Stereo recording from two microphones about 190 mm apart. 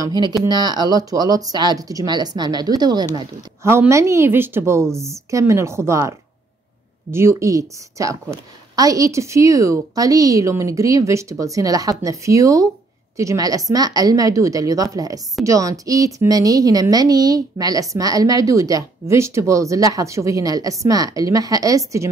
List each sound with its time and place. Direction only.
0.0 s a woman's voice: 20° right (ahead or behind)